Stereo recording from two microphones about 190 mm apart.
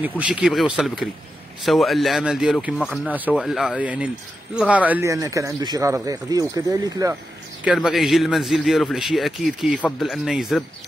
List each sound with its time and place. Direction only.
0.2 s a man's voice: 5° right (ahead or behind)
7.6 s a man's voice: centre (ahead or behind)